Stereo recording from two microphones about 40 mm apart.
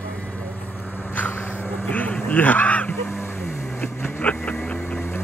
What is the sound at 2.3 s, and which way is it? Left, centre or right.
Honk, left.